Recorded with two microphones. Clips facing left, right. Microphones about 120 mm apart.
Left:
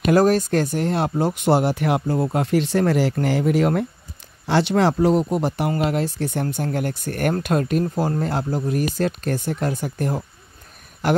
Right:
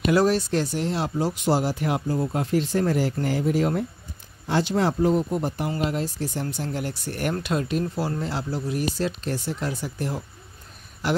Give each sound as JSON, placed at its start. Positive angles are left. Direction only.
{"t": 0.0, "sound": "speech", "side_deg": 45}